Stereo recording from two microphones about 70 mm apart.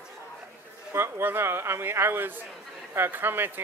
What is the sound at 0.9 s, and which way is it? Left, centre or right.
Speech, right.